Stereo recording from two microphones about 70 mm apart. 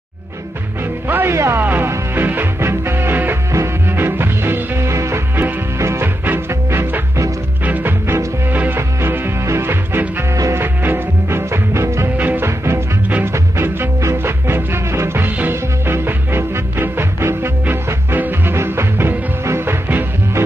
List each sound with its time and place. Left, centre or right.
1.0 s music: right
1.3 s speech: right
1.6 s music: right
7.6 s music: right
10.3 s music: right
10.6 s music: right
12.2 s music: right
12.4 s music: right